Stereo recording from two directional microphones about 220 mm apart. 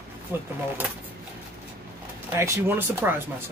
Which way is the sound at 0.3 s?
10° right (ahead or behind).